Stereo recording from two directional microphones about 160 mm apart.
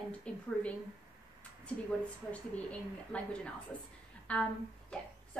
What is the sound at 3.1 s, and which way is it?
Speech, 5° left (ahead or behind).